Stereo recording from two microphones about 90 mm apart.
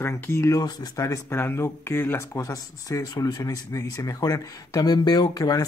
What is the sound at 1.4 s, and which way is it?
Speech, 25° left (ahead or behind).